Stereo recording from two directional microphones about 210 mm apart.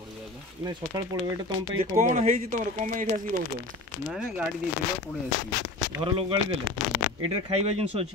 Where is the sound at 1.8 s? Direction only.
35° right (ahead or behind).